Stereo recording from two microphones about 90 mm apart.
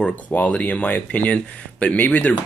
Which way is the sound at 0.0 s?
15° left (ahead or behind).